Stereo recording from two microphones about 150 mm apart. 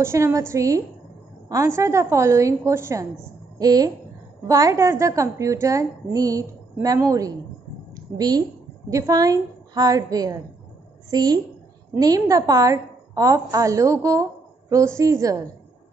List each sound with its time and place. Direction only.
0.0 s a woman's voice: 20° right (ahead or behind)